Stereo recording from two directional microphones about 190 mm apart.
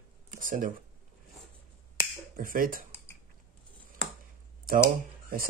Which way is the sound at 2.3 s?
45° right (ahead or behind).